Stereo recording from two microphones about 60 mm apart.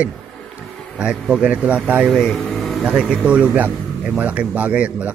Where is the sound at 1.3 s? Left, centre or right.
Centre.